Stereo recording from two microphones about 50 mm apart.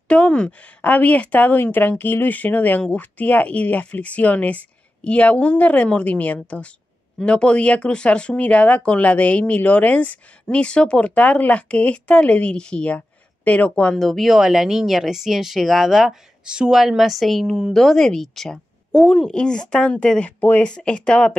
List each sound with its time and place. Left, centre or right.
0.1 s speech: left
1.6 s speech: left
13.9 s speech: centre
14.2 s speech: centre
16.4 s speech: centre
16.8 s a woman's voice: centre; by 20.6 s left
20.6 s speech: centre